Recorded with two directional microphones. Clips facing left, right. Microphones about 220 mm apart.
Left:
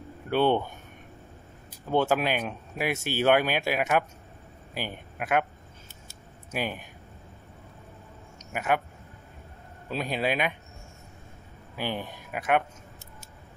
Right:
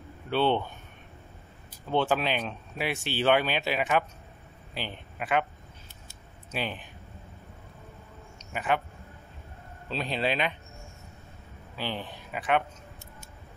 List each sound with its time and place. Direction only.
0.3 s speech: 10° left (ahead or behind)
1.9 s speech: 10° left (ahead or behind)
6.5 s speech: 10° left (ahead or behind)
8.5 s speech: 10° left (ahead or behind)
9.8 s speech: 10° left (ahead or behind)
11.7 s speech: 15° left (ahead or behind)